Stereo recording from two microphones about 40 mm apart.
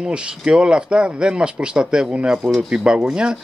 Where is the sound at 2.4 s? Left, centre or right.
Centre.